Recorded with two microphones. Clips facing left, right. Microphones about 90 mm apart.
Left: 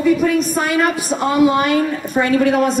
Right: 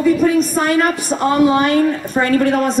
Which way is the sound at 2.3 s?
45° right (ahead or behind).